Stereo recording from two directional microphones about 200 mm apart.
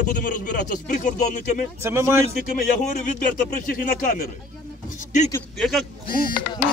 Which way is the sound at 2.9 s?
40° left (ahead or behind).